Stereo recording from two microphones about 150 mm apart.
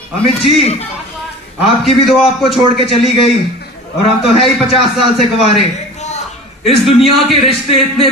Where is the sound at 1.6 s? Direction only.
Centre (ahead or behind).